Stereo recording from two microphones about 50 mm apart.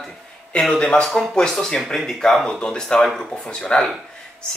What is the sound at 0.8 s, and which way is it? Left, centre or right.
Speech, centre.